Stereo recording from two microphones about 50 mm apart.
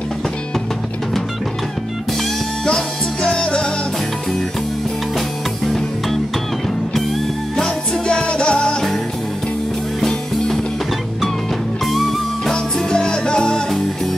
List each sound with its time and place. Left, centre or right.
2.6 s music: centre
6.9 s music: centre
7.6 s music: centre
10.0 s music: centre
11.8 s music: centre
12.4 s music: centre